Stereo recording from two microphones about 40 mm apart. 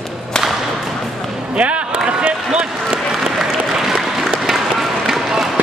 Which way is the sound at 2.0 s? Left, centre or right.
Right.